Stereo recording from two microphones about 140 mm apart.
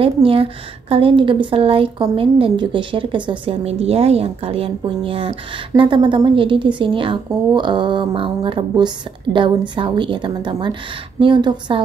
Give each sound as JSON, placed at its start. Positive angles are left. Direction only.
{"t": 0.0, "sound": "a woman's voice", "side_deg": -40}